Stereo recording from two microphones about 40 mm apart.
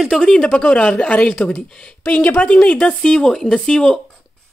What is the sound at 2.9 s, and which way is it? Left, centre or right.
Speech, centre.